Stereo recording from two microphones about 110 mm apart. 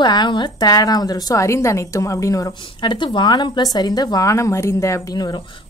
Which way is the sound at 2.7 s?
45° left (ahead or behind).